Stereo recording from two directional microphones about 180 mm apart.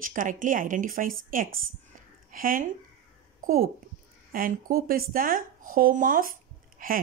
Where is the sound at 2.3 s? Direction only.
50° right (ahead or behind).